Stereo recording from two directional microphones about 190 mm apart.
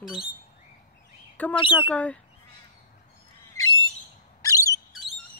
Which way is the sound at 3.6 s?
15° left (ahead or behind).